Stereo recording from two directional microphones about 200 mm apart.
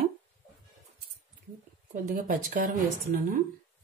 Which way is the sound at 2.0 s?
40° right (ahead or behind).